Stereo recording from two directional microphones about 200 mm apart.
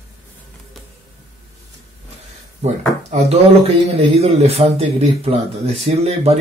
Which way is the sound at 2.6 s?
30° right (ahead or behind).